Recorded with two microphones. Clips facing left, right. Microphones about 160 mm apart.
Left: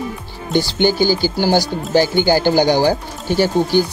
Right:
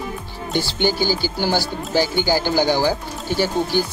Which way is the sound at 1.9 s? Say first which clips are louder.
Left 5 dB; 50° left (ahead or behind).